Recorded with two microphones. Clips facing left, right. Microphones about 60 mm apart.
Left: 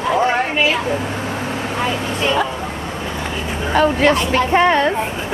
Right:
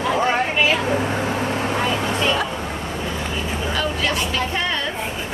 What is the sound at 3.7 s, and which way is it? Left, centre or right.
Speech, left.